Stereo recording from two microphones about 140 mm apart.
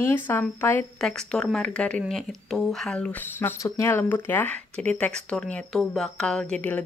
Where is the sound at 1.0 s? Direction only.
5° left (ahead or behind).